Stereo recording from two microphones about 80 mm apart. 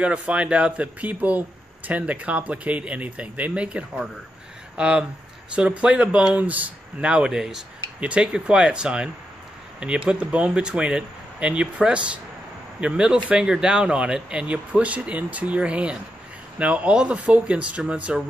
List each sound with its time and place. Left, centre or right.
0.0 s speech: centre